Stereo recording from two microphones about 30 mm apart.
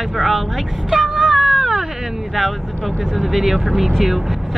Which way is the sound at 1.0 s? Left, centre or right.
Right.